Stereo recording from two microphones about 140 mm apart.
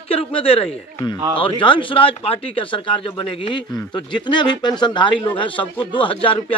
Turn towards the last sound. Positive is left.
turn(degrees=35)  # may be behind; listen again after turning